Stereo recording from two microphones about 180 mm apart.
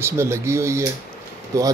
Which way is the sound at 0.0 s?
15° right (ahead or behind).